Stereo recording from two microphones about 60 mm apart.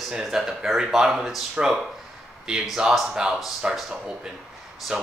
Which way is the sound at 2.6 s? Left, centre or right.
Centre.